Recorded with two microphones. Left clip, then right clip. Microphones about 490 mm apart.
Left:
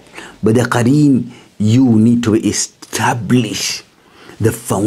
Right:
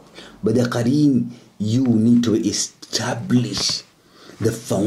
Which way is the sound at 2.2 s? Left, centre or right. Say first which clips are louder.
Left 5 dB; left.